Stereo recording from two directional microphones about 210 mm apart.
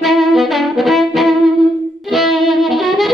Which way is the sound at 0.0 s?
Centre (ahead or behind).